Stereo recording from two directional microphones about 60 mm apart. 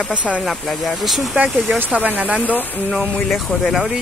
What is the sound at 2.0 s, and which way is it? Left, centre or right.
Speech, right.